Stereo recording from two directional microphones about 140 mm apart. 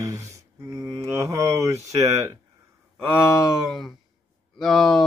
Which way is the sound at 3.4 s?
5° right (ahead or behind).